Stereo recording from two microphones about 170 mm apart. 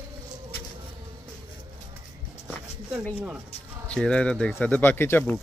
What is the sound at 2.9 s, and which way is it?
Speech, 5° right (ahead or behind).